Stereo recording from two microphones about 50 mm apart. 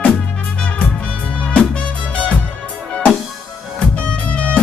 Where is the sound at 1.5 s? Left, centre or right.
Left.